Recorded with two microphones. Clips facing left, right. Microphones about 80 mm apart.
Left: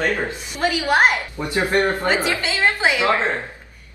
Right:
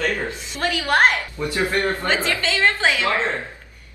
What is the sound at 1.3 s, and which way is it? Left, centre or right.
A woman's voice, left.